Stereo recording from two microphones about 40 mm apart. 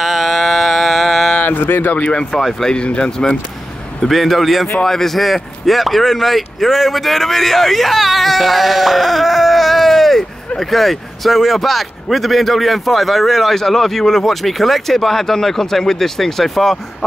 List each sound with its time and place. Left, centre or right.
0.0 s music: centre
1.6 s speech: left
2.6 s speech: left
4.1 s speech: centre